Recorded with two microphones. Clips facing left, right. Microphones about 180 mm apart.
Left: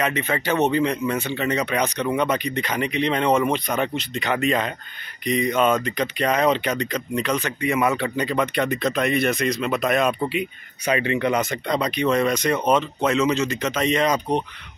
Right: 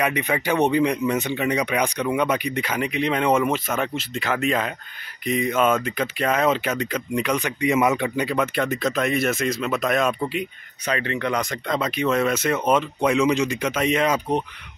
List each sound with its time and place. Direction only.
0.0 s speech: 15° right (ahead or behind)